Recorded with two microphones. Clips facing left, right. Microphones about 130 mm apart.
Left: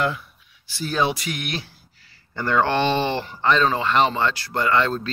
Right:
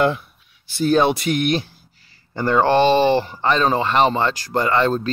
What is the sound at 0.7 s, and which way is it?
Speech, 55° right (ahead or behind).